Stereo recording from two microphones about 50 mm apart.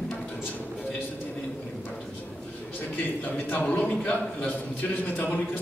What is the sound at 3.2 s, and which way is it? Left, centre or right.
A man's voice, left.